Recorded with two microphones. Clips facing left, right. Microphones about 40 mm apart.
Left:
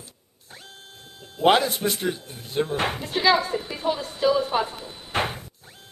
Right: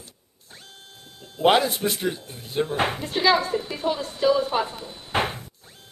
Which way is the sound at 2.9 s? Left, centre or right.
Centre.